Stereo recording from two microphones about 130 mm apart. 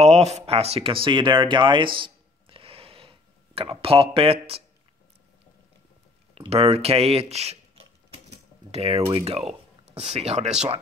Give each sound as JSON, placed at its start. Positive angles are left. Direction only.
{"t": 0.0, "sound": "a sound", "side_deg": -55}
{"t": 3.8, "sound": "speech", "side_deg": -45}
{"t": 6.3, "sound": "speech", "side_deg": -50}
{"t": 8.3, "sound": "typing", "side_deg": -50}
{"t": 9.1, "sound": "speech", "side_deg": -50}